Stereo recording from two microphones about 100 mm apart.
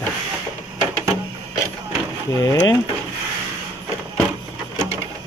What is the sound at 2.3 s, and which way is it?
Speech, 35° left (ahead or behind).